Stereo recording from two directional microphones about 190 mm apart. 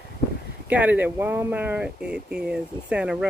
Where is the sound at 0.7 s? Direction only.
10° right (ahead or behind).